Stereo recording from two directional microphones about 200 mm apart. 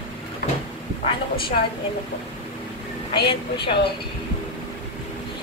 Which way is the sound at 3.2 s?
25° left (ahead or behind).